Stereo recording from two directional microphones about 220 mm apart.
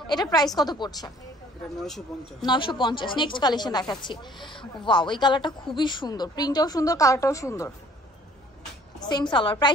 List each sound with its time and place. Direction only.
0.0 s a woman's voice: 20° left (ahead or behind)
1.8 s speech: centre (ahead or behind)
2.4 s a woman's voice: 20° left (ahead or behind)
9.0 s a woman's voice: 20° left (ahead or behind)